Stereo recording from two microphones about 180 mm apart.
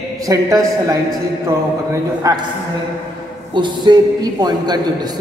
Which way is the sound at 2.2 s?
20° right (ahead or behind).